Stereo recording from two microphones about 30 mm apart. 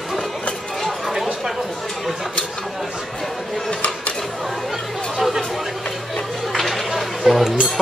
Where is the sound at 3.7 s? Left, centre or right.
Left.